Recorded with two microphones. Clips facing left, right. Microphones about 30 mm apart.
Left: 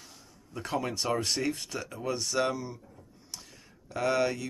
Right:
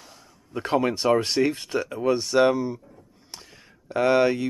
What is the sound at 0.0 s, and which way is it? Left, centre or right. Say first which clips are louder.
Speech: right 3 dB; right.